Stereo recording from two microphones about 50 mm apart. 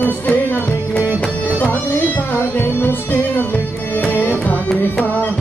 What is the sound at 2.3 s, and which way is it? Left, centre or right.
Music, left.